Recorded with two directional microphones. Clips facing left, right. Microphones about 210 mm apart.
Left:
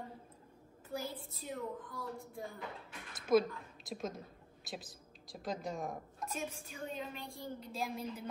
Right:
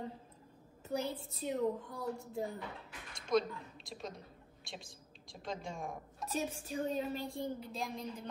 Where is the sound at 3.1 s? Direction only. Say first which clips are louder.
Left 3 dB; 5° left (ahead or behind).